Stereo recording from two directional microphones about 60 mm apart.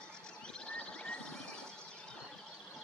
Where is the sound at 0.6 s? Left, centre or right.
Centre.